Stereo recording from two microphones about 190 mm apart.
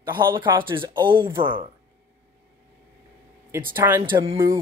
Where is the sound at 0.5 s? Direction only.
25° right (ahead or behind).